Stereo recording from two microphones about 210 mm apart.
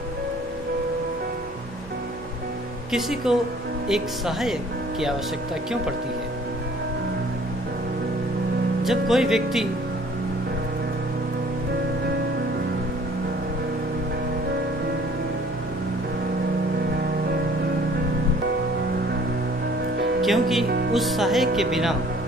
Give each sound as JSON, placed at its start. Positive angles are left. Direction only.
{"t": 2.9, "sound": "speech", "side_deg": 0}
{"t": 8.8, "sound": "speech", "side_deg": 0}
{"t": 20.2, "sound": "speech", "side_deg": 0}
{"t": 20.6, "sound": "music", "side_deg": -50}
{"t": 20.9, "sound": "speech", "side_deg": 0}